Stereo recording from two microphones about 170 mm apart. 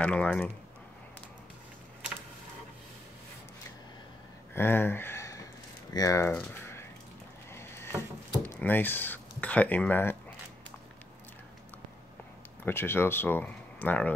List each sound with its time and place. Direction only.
0.0 s speech: 10° left (ahead or behind)
4.6 s speech: 10° left (ahead or behind)
7.5 s rowboat: 15° left (ahead or behind)
8.5 s speech: 10° left (ahead or behind)
12.6 s speech: 15° left (ahead or behind)